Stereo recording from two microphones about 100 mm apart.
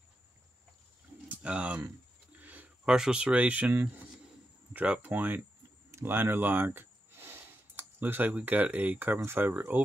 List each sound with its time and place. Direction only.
1.3 s speech: 15° right (ahead or behind)